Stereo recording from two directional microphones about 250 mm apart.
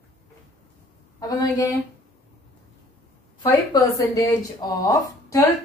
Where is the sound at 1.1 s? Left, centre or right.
Centre.